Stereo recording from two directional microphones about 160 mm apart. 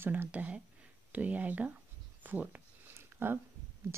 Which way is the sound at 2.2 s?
10° right (ahead or behind).